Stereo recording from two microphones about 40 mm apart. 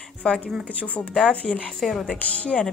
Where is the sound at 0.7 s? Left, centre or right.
Left.